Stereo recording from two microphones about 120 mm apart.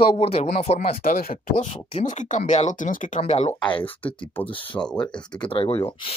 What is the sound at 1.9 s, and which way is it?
Speech, 80° left.